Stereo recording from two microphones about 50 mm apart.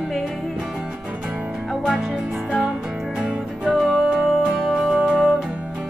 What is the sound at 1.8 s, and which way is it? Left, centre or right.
Music, centre.